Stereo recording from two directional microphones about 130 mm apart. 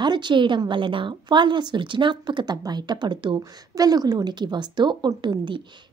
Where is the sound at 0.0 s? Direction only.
35° right (ahead or behind).